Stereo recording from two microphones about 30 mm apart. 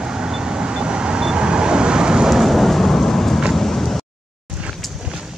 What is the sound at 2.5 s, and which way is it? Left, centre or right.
Thunder, centre.